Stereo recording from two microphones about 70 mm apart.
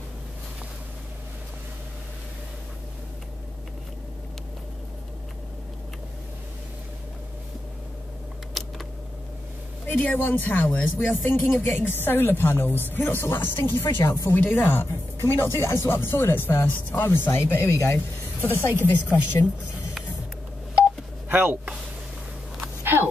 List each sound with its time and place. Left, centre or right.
8.6 s a sound: centre
9.8 s a woman's voice: left
13.9 s a woman's voice: left
14.3 s a woman's voice: left
21.3 s speech: right